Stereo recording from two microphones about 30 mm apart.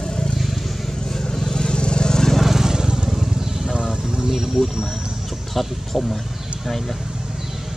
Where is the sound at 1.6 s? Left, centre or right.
Left.